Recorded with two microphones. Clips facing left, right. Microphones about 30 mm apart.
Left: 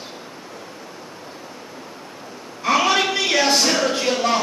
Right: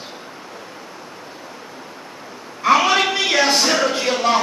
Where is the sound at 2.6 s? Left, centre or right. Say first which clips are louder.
Right 3 dB; centre.